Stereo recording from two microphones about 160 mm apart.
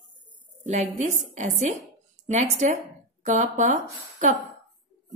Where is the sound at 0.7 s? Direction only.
45° right (ahead or behind).